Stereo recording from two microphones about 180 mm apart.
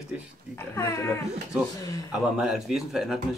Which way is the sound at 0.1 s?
5° right (ahead or behind).